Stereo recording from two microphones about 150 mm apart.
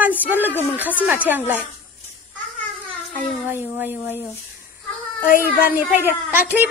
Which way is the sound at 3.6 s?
15° right (ahead or behind).